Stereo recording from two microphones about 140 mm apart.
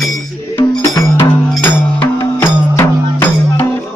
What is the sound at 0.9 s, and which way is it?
Music, 20° left (ahead or behind).